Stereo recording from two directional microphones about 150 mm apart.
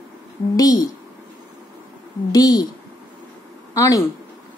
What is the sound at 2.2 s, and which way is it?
Speech, 25° left (ahead or behind).